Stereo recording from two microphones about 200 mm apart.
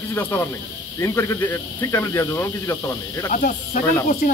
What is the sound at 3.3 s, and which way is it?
Speech, 45° left (ahead or behind).